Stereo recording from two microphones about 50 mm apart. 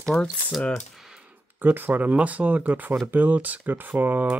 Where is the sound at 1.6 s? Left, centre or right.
Right.